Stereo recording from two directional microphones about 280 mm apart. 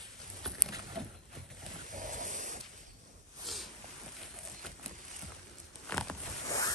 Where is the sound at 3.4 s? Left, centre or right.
Centre.